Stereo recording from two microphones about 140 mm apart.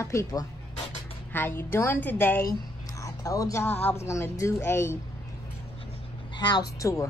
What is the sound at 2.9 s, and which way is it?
A woman's voice, 25° left (ahead or behind).